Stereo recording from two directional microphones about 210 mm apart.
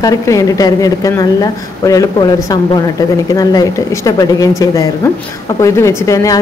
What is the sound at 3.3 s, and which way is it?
A woman's voice, 15° left (ahead or behind).